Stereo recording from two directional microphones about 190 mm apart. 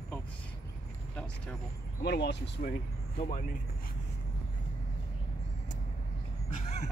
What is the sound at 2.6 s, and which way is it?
Speech, 45° left (ahead or behind).